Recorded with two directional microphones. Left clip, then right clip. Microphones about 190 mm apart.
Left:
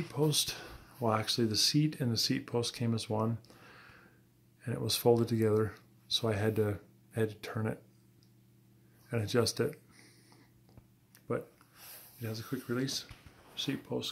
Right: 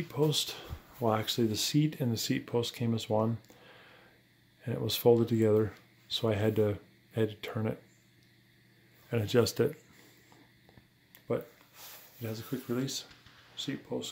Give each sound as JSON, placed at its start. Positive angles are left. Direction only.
{"t": 0.1, "sound": "speech", "side_deg": -10}
{"t": 4.6, "sound": "speech", "side_deg": -15}
{"t": 9.1, "sound": "speech", "side_deg": -25}
{"t": 11.3, "sound": "speech", "side_deg": -20}
{"t": 13.7, "sound": "speech", "side_deg": 10}